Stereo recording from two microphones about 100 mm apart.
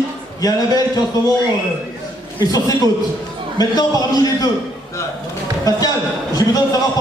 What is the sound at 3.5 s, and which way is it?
Speech, 40° left (ahead or behind).